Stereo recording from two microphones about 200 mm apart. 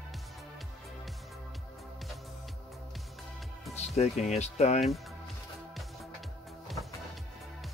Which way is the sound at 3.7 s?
35° left (ahead or behind).